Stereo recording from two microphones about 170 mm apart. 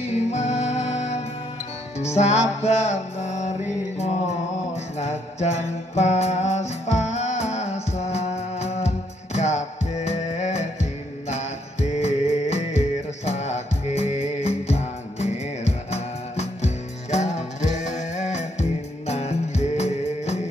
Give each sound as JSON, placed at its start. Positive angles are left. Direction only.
{"t": 0.1, "sound": "music", "side_deg": 40}